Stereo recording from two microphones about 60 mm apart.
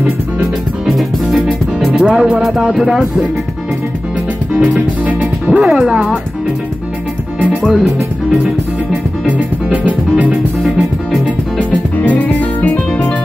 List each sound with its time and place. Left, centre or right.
0.8 s music: centre
2.0 s music: centre
4.6 s music: right
5.6 s speech: centre
7.6 s music: centre
9.2 s music: right